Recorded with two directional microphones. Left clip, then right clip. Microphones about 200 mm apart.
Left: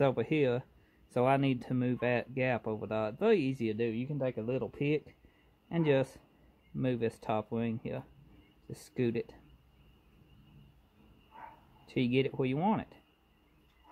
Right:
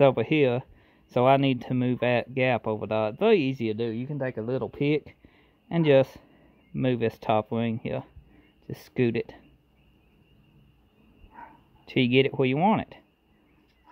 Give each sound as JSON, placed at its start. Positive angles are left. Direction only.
{"t": 0.0, "sound": "speech", "side_deg": -25}
{"t": 4.0, "sound": "speech", "side_deg": -80}
{"t": 4.4, "sound": "speech", "side_deg": -30}
{"t": 11.8, "sound": "speech", "side_deg": -30}